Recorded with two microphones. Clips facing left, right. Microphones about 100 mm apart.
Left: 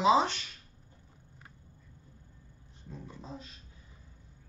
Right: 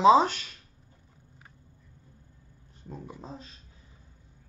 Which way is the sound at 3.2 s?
40° right (ahead or behind).